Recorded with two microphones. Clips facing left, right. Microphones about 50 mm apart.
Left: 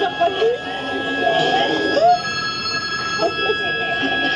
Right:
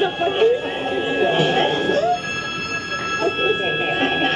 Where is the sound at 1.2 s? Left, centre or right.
Right.